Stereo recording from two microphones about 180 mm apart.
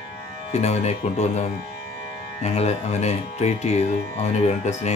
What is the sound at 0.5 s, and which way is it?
Speech, 35° left (ahead or behind).